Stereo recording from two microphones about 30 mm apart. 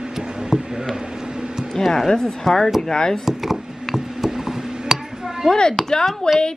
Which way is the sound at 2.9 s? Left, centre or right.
Left.